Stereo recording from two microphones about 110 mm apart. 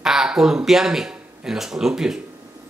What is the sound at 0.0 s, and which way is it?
Speech, 5° right (ahead or behind).